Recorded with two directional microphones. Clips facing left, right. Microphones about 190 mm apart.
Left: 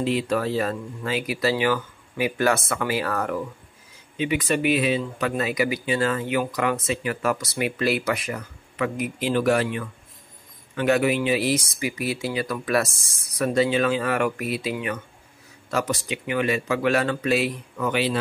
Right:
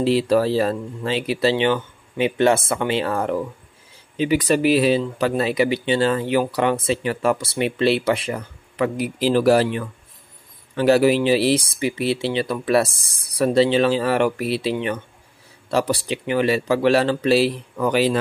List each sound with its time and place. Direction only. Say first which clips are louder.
0.0 s speech: right 6 dB; 35° right (ahead or behind)